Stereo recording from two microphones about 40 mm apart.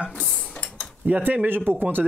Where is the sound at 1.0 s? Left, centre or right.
Right.